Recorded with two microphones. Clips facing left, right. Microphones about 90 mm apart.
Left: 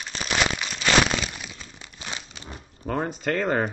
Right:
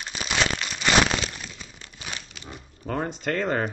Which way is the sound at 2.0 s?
20° left (ahead or behind).